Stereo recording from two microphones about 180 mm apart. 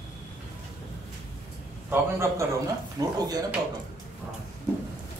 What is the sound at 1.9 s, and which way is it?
A man's voice, 15° right (ahead or behind).